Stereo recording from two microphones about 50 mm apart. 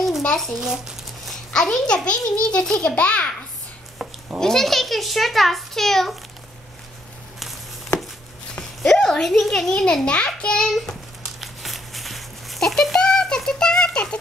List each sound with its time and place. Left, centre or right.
0.6 s speech: centre
1.5 s a child's voice: centre
3.0 s a child's voice: left
4.4 s a child's voice: centre
8.8 s a child's voice: centre
11.2 s a sound: centre
13.5 s rattle: centre